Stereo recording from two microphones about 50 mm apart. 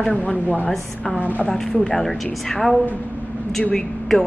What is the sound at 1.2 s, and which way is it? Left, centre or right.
Speech, left.